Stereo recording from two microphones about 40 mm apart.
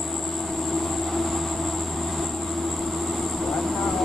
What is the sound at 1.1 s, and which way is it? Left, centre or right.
Vehicle, centre.